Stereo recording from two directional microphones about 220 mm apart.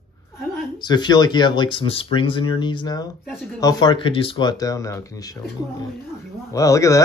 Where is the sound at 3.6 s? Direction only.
15° left (ahead or behind).